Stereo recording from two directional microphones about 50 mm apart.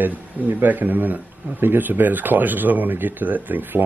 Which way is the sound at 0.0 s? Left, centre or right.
Right.